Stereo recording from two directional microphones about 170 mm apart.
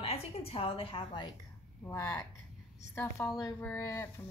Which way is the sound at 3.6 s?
15° left (ahead or behind).